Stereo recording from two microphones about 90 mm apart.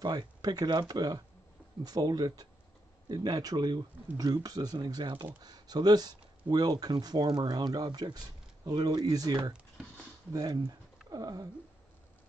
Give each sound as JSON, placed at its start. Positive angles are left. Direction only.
{"t": 0.0, "sound": "speech", "side_deg": -50}
{"t": 5.0, "sound": "speech", "side_deg": -70}
{"t": 5.4, "sound": "speech", "side_deg": -50}
{"t": 11.1, "sound": "a sound", "side_deg": -45}